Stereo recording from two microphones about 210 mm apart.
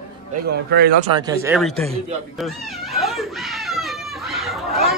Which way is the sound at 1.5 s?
5° right (ahead or behind).